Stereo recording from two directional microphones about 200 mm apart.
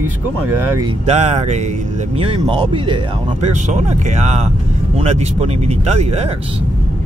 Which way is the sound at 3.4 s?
35° right (ahead or behind).